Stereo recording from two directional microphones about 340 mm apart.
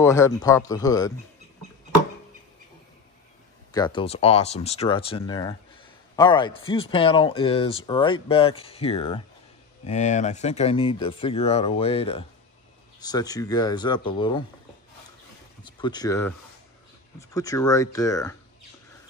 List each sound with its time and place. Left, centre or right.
0.0 s speech: centre
3.7 s speech: centre
15.6 s speech: centre